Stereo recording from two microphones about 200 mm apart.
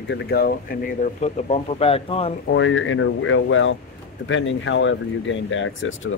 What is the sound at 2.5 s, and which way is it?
Speech, 70° left (ahead or behind).